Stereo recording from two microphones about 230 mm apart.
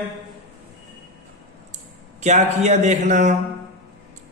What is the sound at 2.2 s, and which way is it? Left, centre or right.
A man's voice, right.